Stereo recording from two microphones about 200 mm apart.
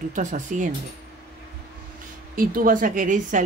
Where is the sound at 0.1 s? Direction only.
40° right (ahead or behind).